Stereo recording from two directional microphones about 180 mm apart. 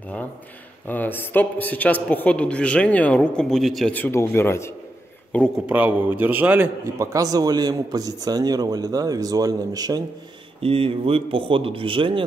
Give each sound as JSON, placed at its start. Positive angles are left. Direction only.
{"t": 0.8, "sound": "a man's voice", "side_deg": 10}
{"t": 5.7, "sound": "a man's voice", "side_deg": -10}
{"t": 10.6, "sound": "a man's voice", "side_deg": -30}